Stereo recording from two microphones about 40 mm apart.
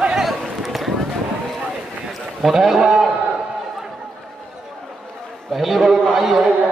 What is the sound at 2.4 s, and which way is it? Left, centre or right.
Speech, centre.